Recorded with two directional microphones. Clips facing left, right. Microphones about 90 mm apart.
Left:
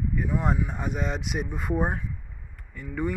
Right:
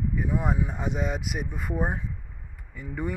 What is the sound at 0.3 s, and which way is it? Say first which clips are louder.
Speech: left 1 dB; 10° right (ahead or behind).